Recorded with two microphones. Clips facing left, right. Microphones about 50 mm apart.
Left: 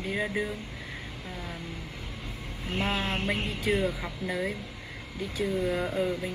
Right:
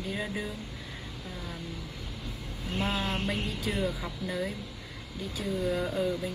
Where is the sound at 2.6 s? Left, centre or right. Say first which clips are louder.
Left 1 dB; left.